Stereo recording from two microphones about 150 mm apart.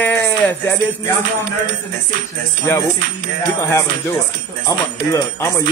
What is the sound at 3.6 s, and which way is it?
Speech, 20° left (ahead or behind).